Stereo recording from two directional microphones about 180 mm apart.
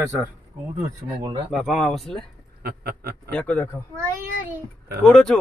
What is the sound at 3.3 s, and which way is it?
Speech, 10° left (ahead or behind).